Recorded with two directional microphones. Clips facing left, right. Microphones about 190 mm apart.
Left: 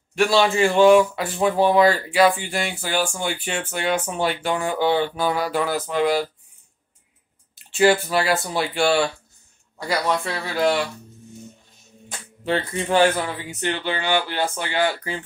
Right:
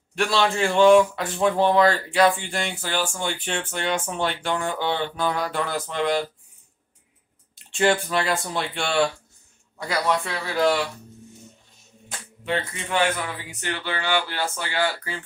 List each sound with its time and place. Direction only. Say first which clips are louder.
0.1 s speech: left 4 dB; 5° left (ahead or behind)
7.5 s speech: left 4 dB; 5° left (ahead or behind)
12.4 s speech: left 5 dB; 35° left (ahead or behind); by 15.2 s 20° left (ahead or behind)